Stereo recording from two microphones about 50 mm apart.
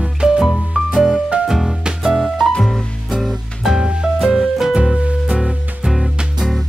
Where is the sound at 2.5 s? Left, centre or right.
Centre.